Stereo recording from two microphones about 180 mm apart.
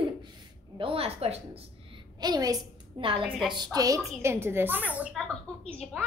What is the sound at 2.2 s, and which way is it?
A woman's voice, 20° right (ahead or behind).